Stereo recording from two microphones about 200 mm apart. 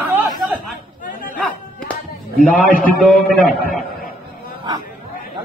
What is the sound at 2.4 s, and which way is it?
A man's voice, centre (ahead or behind).